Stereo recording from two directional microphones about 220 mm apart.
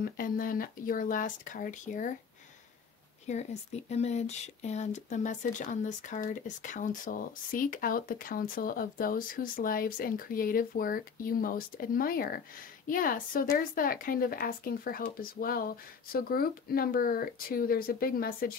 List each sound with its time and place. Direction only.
0.0 s speech: 40° left (ahead or behind)
3.3 s speech: 30° left (ahead or behind)